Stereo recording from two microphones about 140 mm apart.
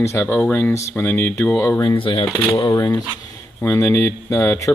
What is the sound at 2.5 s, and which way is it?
Speech, 25° left (ahead or behind).